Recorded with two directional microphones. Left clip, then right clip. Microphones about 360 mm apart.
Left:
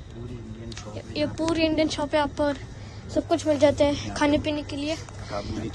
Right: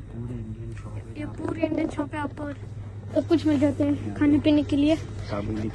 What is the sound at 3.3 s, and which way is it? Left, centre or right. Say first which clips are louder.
Speech: even; centre.